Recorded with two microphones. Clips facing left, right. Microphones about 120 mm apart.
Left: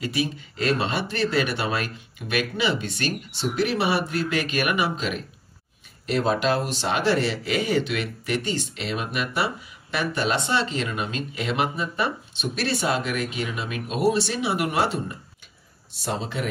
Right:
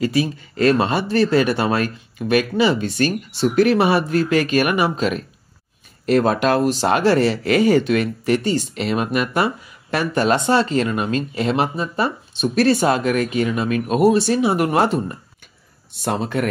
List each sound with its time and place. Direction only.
0.0 s speech: 40° right (ahead or behind)
15.9 s speech: 55° right (ahead or behind)